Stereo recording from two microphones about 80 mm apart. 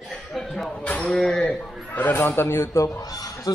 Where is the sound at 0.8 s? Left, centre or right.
Centre.